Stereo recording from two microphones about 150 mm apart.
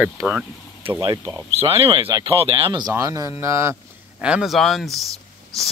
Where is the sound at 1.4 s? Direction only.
40° right (ahead or behind).